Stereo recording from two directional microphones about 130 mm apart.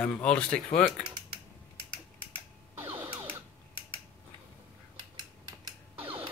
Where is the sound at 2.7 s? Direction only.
20° right (ahead or behind).